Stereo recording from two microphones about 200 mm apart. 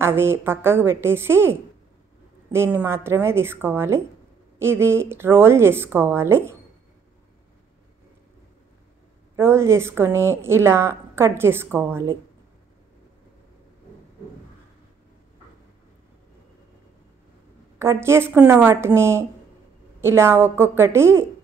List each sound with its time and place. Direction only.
0.0 s a woman's voice: 10° right (ahead or behind)
9.4 s a woman's voice: 15° right (ahead or behind)
17.7 s a woman's voice: 15° right (ahead or behind)